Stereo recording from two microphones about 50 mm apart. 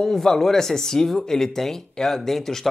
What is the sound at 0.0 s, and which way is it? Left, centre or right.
Speech, centre.